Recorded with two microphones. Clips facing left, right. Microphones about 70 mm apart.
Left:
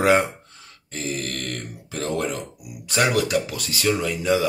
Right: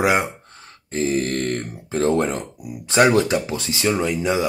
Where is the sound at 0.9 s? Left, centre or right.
Right.